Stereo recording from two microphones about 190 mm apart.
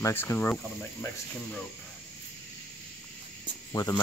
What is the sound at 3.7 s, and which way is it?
Speech, 20° left (ahead or behind).